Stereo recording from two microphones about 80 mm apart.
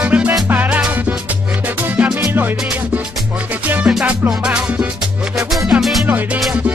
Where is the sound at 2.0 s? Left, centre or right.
Centre.